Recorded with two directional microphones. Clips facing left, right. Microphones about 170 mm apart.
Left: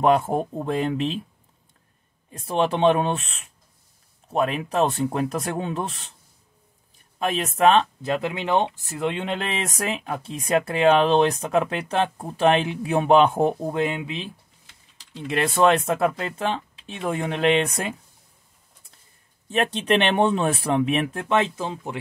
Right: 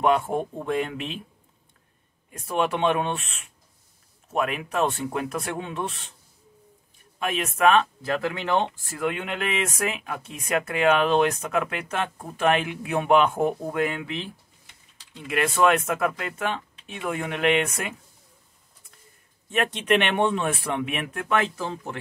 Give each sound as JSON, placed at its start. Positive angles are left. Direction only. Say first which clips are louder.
{"t": 0.0, "sound": "speech", "louder": "left 3 dB", "side_deg": 40}
{"t": 2.3, "sound": "speech", "louder": "left 2 dB", "side_deg": 30}
{"t": 7.2, "sound": "speech", "louder": "left 3 dB", "side_deg": 35}
{"t": 15.1, "sound": "speech", "louder": "left 2 dB", "side_deg": 30}
{"t": 19.5, "sound": "speech", "louder": "left 1 dB", "side_deg": 30}